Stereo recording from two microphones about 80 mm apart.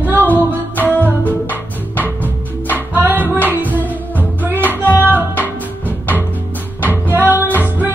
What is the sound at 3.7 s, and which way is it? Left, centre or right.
Music, left.